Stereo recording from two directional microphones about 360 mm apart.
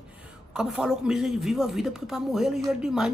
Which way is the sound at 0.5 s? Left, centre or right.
Centre.